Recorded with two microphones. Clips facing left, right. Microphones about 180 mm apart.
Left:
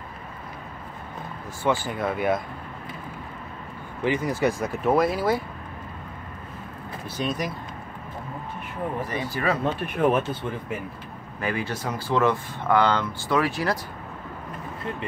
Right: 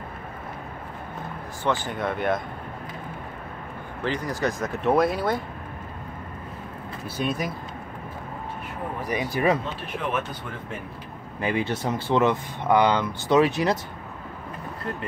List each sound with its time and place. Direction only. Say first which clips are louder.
1.9 s speech: left 1 dB; 5° left (ahead or behind)
4.0 s speech: left 3 dB; 15° left (ahead or behind)
4.8 s speech: even; centre (ahead or behind)
7.2 s speech: right 1 dB; 5° right (ahead or behind)
9.0 s speech: right 6 dB; 15° right (ahead or behind)
9.9 s speech: left 6 dB; 45° left (ahead or behind)
11.4 s speech: right 3 dB; 20° right (ahead or behind)